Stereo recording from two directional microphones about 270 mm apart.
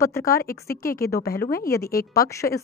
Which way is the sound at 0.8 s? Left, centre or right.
Left.